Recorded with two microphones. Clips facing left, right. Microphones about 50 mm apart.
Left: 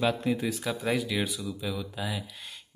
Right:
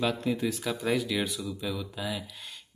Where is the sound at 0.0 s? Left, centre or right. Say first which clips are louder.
Left 1 dB; centre.